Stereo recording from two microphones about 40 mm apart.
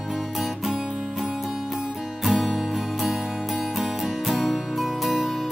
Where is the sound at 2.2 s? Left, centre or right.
Centre.